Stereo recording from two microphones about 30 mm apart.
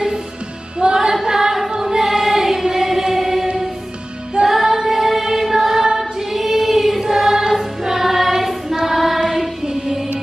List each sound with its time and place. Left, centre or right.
0.8 s music: right
1.2 s choir: centre
4.5 s music: centre
5.9 s choir: centre
9.2 s music: centre